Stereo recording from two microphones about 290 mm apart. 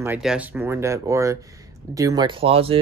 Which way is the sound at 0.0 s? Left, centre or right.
Centre.